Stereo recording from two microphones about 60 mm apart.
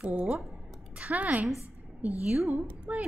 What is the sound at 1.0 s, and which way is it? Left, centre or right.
A woman's voice, right.